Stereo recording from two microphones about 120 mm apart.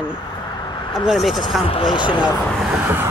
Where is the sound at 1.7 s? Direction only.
45° left (ahead or behind).